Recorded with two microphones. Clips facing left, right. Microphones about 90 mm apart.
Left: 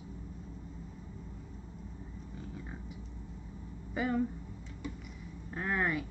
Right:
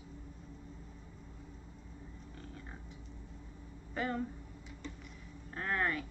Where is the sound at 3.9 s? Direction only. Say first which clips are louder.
Left 5 dB; 5° left (ahead or behind).